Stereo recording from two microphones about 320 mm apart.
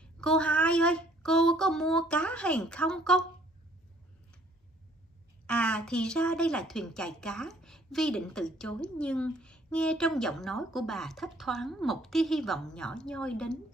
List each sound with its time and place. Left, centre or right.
0.0 s a woman's voice: centre
5.5 s a woman's voice: centre